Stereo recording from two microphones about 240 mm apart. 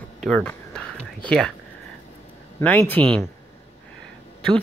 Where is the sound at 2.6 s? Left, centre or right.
Centre.